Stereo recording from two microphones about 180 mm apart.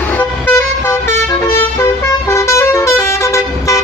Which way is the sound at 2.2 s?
15° left (ahead or behind).